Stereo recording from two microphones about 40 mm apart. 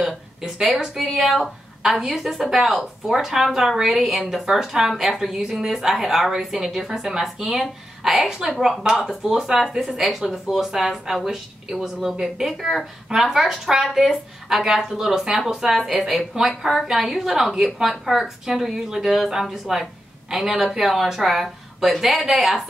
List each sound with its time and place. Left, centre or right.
0.4 s a woman's voice: centre
15.8 s a woman's voice: centre
16.1 s speech: centre